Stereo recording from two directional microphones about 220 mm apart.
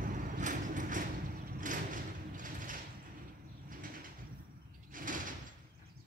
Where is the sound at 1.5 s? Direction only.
35° right (ahead or behind).